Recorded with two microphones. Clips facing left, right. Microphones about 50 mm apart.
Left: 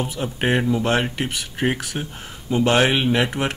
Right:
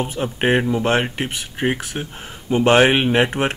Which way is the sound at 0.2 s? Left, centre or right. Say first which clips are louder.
Right 3 dB; right.